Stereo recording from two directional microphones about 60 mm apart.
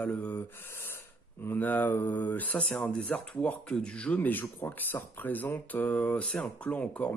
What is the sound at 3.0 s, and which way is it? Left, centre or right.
Speech, left.